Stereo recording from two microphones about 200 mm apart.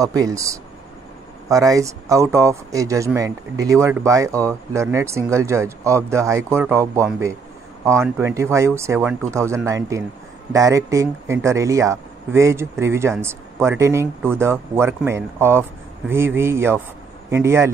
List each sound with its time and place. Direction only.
0.0 s speech: 15° right (ahead or behind)